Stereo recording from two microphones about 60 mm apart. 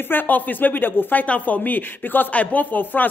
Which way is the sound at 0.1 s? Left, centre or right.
Left.